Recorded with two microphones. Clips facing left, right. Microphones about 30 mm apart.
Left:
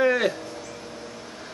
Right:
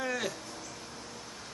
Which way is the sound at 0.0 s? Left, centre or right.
Left.